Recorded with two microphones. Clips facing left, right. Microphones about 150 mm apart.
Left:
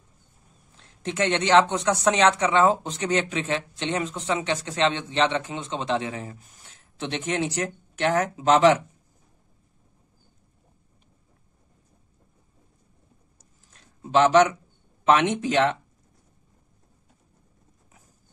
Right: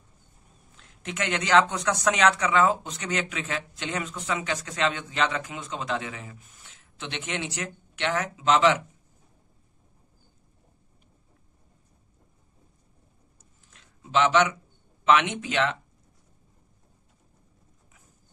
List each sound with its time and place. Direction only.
0.7 s speech: 35° left (ahead or behind)
13.4 s a sound: 35° left (ahead or behind)
15.0 s speech: 35° left (ahead or behind)